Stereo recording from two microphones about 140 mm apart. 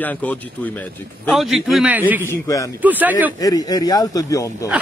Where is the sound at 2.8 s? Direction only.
10° right (ahead or behind).